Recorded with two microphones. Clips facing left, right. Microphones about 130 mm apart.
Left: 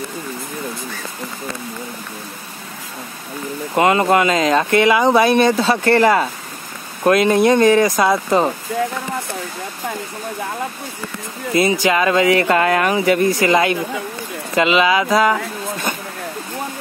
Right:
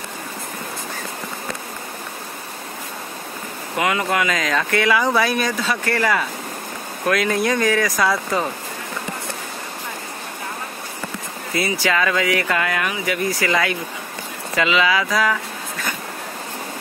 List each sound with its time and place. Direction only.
3.7 s speech: 35° left (ahead or behind)
11.5 s speech: 20° left (ahead or behind)